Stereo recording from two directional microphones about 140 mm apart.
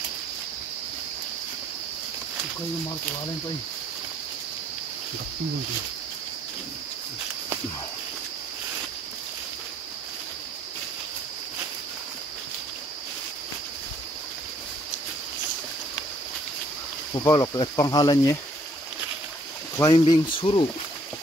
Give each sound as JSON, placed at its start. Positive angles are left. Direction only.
{"t": 17.1, "sound": "speech", "side_deg": 25}
{"t": 19.8, "sound": "speech", "side_deg": 30}